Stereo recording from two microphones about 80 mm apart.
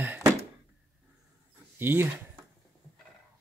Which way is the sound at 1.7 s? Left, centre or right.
Right.